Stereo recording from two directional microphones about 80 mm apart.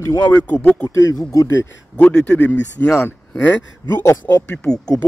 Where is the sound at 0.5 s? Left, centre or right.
Centre.